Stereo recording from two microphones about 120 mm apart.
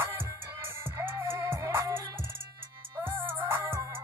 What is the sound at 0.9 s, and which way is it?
Music, 20° right (ahead or behind).